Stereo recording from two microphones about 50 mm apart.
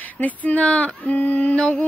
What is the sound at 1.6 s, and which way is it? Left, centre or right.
Speech, left.